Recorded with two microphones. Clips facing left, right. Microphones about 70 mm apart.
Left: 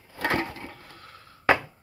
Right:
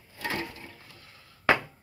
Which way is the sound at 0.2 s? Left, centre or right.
Left.